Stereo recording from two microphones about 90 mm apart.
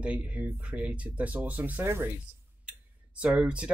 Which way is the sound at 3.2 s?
10° right (ahead or behind).